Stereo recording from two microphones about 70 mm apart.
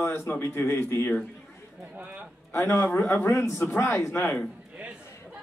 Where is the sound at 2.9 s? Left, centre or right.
Left.